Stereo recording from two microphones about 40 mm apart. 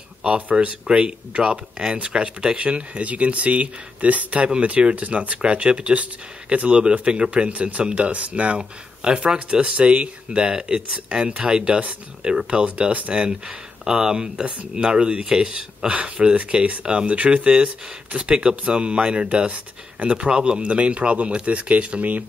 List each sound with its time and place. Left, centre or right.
0.2 s speech: right
5.4 s speech: right
13.8 s speech: centre; by 22.2 s right